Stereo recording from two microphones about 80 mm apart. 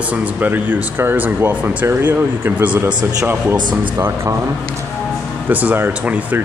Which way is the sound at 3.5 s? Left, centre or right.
Right.